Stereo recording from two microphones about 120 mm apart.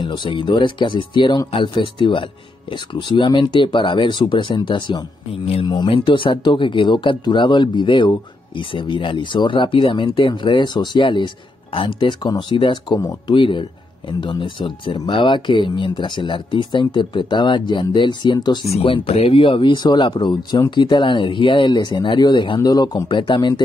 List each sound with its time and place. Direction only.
0.0 s speech: 40° left (ahead or behind)
18.7 s speech: 50° left (ahead or behind)